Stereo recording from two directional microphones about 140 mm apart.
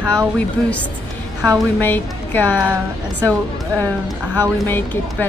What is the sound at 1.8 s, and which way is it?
Speech, 15° left (ahead or behind).